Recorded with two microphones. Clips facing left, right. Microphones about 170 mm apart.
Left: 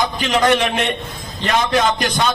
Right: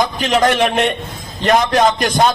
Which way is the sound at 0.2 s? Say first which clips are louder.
Right 1 dB; 45° right (ahead or behind).